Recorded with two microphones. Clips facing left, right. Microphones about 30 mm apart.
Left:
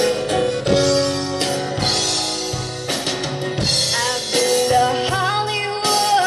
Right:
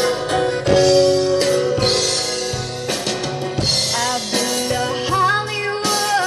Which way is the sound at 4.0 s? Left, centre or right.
Centre.